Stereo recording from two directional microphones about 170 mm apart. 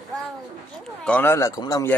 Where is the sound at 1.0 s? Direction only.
10° left (ahead or behind).